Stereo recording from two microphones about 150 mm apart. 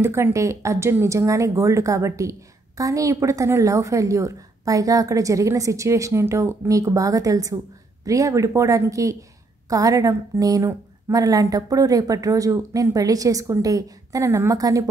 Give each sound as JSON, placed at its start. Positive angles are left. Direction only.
{"t": 0.0, "sound": "a woman's voice", "side_deg": -15}